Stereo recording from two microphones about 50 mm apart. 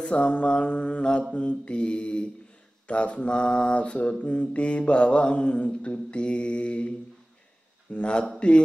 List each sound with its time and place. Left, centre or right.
0.0 s mantra: left
7.9 s mantra: left